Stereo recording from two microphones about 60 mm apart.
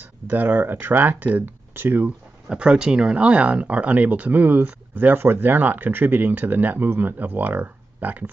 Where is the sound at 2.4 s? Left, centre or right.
Centre.